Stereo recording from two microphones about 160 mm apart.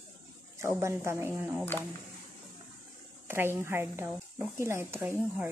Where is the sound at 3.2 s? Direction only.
15° right (ahead or behind).